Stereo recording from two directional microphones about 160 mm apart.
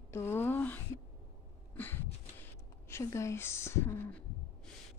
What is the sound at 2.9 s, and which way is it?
A woman's voice, 20° left (ahead or behind).